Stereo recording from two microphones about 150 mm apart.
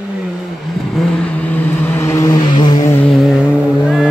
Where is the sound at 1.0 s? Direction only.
10° left (ahead or behind); by 2.8 s 30° left (ahead or behind).